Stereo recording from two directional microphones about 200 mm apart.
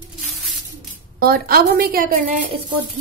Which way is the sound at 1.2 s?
50° right (ahead or behind).